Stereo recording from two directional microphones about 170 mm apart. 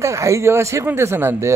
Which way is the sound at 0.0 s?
15° right (ahead or behind).